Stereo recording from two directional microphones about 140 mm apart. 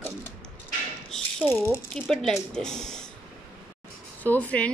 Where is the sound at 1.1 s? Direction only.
5° left (ahead or behind).